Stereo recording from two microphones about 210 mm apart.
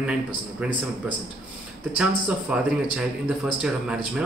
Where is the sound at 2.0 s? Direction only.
5° right (ahead or behind).